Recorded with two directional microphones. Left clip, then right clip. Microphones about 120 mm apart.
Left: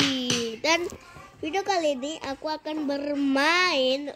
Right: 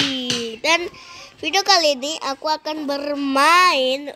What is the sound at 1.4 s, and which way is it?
A woman's voice, 15° right (ahead or behind).